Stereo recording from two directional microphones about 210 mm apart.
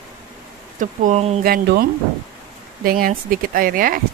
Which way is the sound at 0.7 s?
35° right (ahead or behind).